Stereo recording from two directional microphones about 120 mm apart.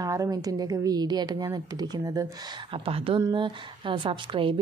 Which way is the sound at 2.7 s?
50° right (ahead or behind).